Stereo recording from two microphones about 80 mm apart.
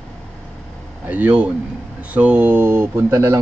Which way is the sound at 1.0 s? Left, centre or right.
Right.